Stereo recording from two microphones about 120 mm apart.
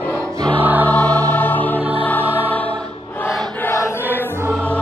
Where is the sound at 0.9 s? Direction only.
15° left (ahead or behind).